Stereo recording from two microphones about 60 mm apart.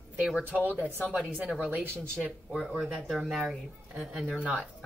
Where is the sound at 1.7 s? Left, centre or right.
Right.